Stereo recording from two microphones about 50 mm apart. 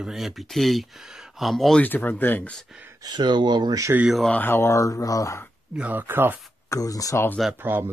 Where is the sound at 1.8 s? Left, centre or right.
Left.